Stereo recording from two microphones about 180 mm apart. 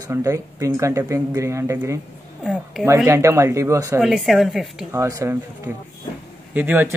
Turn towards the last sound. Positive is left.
turn(degrees=-10)  # may be behind; listen again after turning